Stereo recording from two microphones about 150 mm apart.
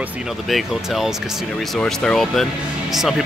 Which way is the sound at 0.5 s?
Centre (ahead or behind).